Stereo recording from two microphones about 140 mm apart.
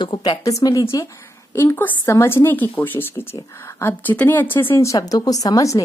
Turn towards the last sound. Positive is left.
turn(degrees=25)  # may be behind; listen again after turning